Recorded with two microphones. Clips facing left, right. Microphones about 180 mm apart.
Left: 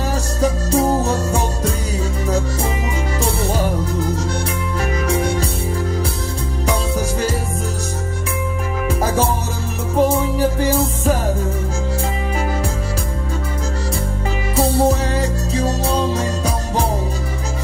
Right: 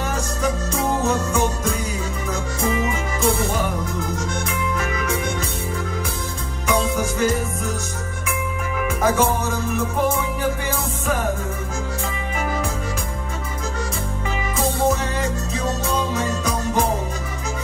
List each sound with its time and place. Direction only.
0.4 s music: 35° left (ahead or behind)
6.7 s music: 35° left (ahead or behind)
9.0 s music: 35° left (ahead or behind)
14.5 s music: 35° left (ahead or behind)